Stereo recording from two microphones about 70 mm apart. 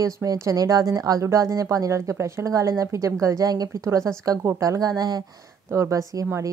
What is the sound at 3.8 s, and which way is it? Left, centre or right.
Speech, right.